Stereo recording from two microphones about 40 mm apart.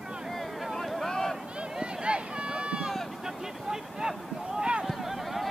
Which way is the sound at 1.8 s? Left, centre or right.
Right.